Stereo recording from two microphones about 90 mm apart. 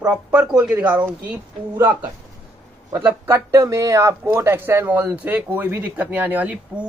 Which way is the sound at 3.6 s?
40° right (ahead or behind).